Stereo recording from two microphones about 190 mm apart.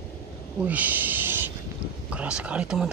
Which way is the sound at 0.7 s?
10° right (ahead or behind).